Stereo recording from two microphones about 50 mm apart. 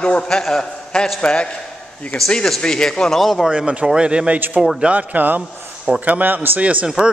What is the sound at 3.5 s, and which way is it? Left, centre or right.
A man's voice, right.